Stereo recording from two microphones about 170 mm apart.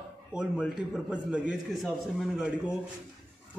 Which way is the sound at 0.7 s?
5° right (ahead or behind).